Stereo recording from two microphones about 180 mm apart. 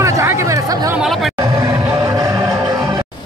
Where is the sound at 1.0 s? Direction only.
Centre (ahead or behind).